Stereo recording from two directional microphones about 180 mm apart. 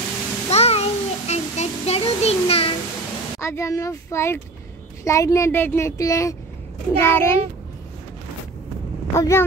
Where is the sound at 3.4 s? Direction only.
15° left (ahead or behind).